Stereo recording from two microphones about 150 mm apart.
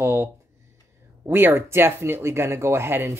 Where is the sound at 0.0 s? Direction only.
15° right (ahead or behind).